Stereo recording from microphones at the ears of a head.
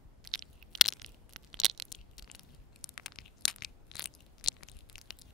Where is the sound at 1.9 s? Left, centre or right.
Left.